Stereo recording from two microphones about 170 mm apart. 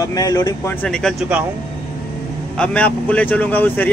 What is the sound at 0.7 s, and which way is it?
Speech, 5° left (ahead or behind).